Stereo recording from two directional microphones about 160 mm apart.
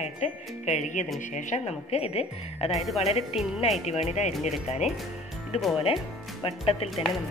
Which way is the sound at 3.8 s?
45° left (ahead or behind).